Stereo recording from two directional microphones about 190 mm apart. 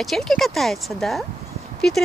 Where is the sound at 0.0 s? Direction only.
Centre (ahead or behind).